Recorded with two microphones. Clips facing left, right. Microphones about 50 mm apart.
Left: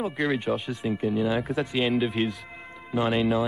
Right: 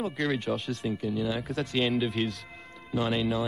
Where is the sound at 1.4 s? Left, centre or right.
Centre.